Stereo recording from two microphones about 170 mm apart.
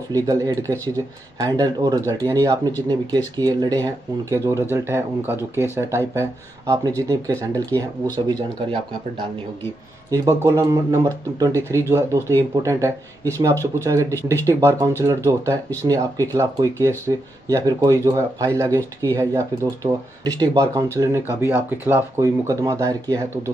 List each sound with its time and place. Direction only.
0.1 s speech: 20° right (ahead or behind)
10.1 s speech: 15° right (ahead or behind)